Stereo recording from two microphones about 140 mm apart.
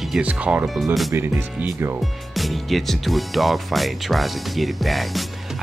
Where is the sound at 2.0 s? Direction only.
Centre (ahead or behind).